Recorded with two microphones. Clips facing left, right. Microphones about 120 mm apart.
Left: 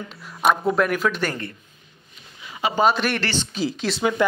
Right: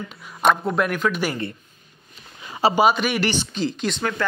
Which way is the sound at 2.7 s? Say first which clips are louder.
Left 1 dB; 5° right (ahead or behind).